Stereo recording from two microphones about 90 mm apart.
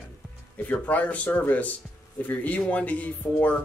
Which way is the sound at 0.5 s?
15° left (ahead or behind).